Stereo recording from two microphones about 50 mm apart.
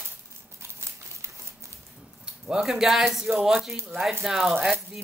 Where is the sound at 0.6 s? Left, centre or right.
Right.